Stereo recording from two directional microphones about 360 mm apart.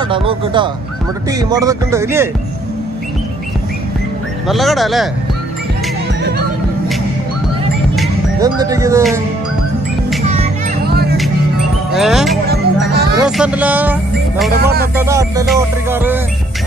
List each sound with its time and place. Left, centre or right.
0.1 s speech: centre
4.5 s music: centre
7.9 s music: centre
8.5 s speech: centre
10.3 s music: right
11.9 s music: centre
12.4 s music: right
13.2 s music: centre
14.6 s speech: right
15.0 s music: centre